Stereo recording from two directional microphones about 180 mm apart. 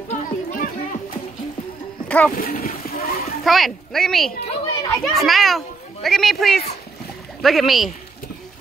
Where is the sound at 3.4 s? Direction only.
Centre (ahead or behind).